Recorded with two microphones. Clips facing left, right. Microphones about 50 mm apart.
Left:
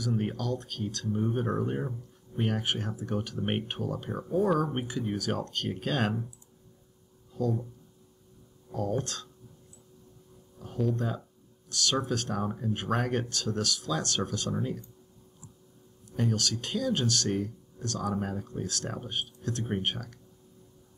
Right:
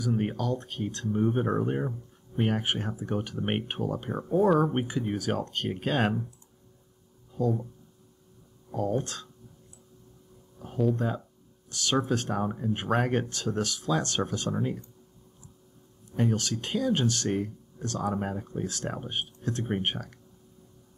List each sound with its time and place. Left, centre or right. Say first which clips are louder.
0.0 s speech: right 2 dB; centre
7.3 s speech: right 2 dB; centre
8.7 s speech: right 2 dB; centre
11.7 s speech: right 2 dB; right
12.4 s speech: right 2 dB; centre
16.1 s speech: right 2 dB; right